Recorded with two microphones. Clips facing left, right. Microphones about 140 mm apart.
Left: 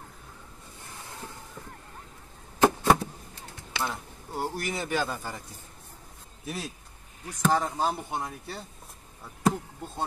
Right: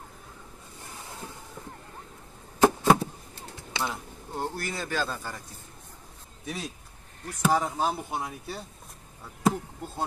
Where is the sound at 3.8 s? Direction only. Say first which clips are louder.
Even; centre (ahead or behind).